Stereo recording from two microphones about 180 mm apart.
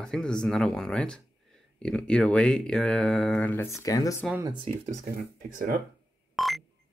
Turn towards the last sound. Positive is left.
turn(degrees=0)  # may be behind; listen again after turning